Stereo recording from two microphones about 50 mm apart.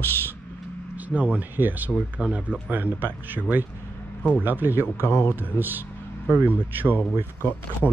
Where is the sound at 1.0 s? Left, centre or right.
Right.